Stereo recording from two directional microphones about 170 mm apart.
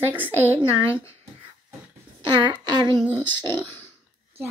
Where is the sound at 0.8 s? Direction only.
15° left (ahead or behind).